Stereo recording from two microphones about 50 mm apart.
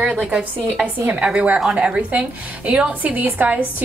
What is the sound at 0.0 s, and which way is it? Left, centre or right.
A woman's voice, right.